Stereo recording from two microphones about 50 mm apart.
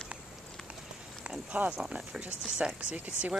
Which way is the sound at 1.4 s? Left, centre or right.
Right.